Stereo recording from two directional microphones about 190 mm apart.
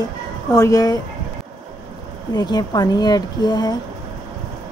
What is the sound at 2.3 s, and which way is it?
Speech, 20° left (ahead or behind).